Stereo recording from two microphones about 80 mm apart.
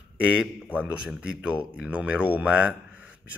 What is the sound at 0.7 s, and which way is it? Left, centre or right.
Speech, centre.